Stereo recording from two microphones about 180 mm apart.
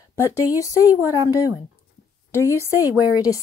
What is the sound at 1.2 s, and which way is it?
Speech, 15° right (ahead or behind).